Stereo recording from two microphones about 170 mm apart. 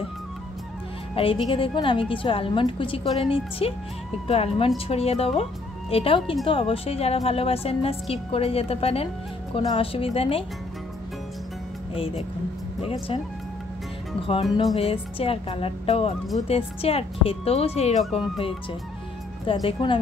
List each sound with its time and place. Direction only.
1.1 s a woman's voice: 35° left (ahead or behind)
11.9 s a woman's voice: 35° left (ahead or behind)
14.2 s a woman's voice: 35° left (ahead or behind)
19.4 s a woman's voice: 30° left (ahead or behind)